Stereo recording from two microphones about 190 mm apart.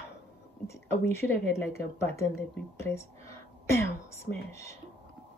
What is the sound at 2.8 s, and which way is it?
Whispering, 15° left (ahead or behind).